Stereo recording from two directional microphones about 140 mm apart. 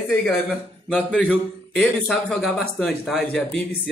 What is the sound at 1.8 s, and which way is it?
Speech, 5° left (ahead or behind).